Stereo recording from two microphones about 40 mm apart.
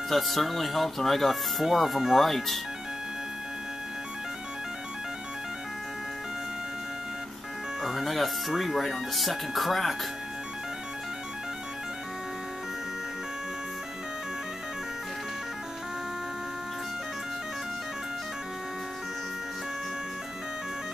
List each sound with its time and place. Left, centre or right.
0.1 s speech: centre
2.2 s speech: centre
7.8 s speech: centre